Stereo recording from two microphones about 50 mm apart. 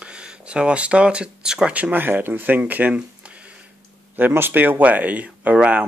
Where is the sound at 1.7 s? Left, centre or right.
Right.